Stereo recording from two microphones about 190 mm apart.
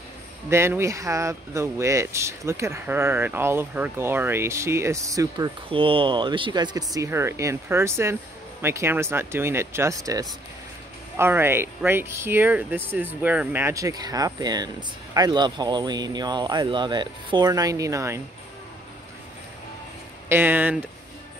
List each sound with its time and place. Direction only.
0.5 s speech: 15° right (ahead or behind)
5.7 s speech: 30° right (ahead or behind)
20.2 s speech: 10° right (ahead or behind)